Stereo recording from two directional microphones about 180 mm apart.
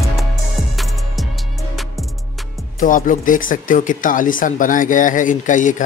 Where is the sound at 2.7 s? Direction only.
50° left (ahead or behind).